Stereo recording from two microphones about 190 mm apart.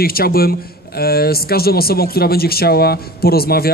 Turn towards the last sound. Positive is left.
turn(degrees=55)  # may be behind; listen again after turning